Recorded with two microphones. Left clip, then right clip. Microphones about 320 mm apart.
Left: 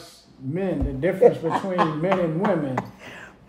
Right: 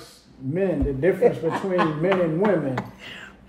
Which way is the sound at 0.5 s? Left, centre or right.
Centre.